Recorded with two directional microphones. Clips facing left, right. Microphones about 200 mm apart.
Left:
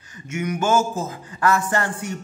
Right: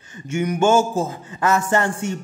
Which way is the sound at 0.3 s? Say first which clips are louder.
Right 4 dB; 30° right (ahead or behind).